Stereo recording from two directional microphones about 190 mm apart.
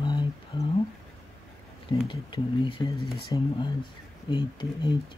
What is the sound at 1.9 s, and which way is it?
Speech, 25° left (ahead or behind).